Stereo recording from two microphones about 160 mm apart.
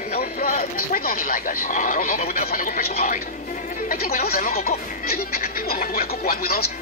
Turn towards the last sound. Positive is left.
turn(degrees=65)  # may be behind; listen again after turning